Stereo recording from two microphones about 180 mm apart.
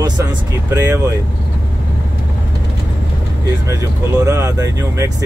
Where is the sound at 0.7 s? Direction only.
15° right (ahead or behind).